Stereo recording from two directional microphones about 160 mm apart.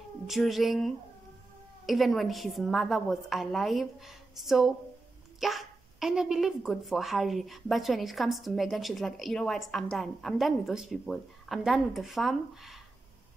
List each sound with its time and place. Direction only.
0.3 s speech: centre (ahead or behind)